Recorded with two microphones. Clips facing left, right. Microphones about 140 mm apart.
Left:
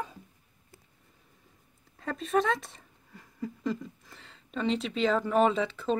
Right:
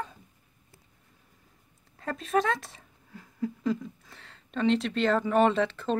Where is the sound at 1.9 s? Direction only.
Centre (ahead or behind).